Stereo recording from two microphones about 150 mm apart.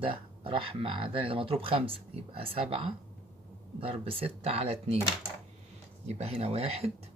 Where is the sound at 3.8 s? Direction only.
40° right (ahead or behind).